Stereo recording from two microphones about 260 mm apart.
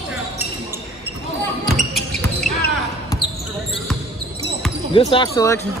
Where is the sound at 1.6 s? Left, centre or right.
Centre.